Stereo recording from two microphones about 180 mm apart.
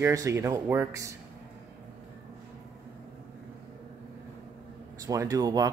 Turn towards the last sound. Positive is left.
turn(degrees=-20)  # may be behind; listen again after turning